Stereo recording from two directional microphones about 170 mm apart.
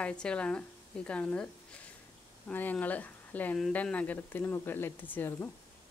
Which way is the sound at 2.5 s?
10° left (ahead or behind).